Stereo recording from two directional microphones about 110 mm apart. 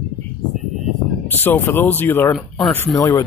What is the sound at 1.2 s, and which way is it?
Speech, 20° left (ahead or behind).